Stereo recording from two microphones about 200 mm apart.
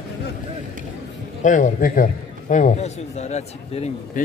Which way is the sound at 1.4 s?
40° left (ahead or behind).